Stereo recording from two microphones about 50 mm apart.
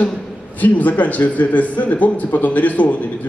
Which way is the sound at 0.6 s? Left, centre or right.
Left.